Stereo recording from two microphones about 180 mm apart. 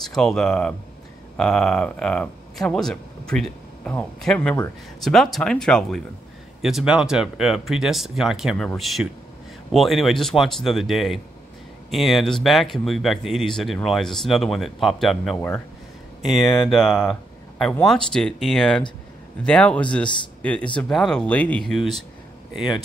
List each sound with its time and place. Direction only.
0.0 s speech: 5° left (ahead or behind)
16.3 s speech: 20° left (ahead or behind)
16.6 s speech: 5° left (ahead or behind)